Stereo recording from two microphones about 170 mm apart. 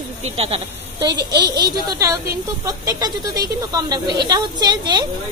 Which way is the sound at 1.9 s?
20° right (ahead or behind).